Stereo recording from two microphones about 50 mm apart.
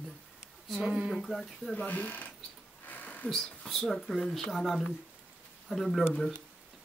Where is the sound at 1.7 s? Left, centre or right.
Left.